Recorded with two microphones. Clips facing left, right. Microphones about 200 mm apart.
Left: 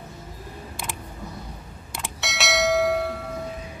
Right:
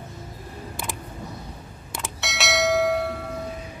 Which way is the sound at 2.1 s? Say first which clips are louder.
Even; centre (ahead or behind).